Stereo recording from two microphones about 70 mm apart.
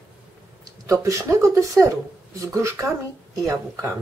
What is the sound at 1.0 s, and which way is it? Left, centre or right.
Speech, right.